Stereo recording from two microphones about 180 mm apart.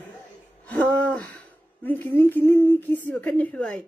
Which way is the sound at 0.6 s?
10° left (ahead or behind).